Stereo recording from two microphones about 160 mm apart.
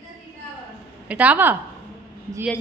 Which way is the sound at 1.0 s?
10° right (ahead or behind).